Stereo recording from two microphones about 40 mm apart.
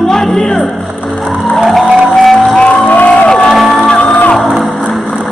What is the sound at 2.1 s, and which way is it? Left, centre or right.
Music, centre.